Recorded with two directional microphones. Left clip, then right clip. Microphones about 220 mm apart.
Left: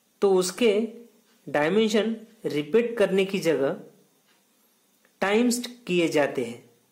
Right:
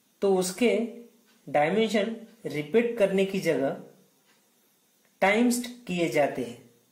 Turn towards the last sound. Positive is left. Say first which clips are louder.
# left 2 dB
turn(degrees=40)  # may be behind; listen again after turning